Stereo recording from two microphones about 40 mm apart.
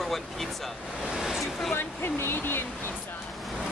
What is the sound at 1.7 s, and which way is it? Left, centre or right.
Speech, left.